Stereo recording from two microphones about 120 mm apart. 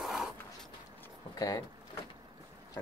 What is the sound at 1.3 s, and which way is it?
Speech, 30° left (ahead or behind).